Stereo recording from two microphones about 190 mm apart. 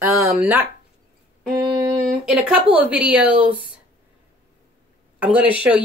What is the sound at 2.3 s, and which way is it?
Speech, 5° right (ahead or behind).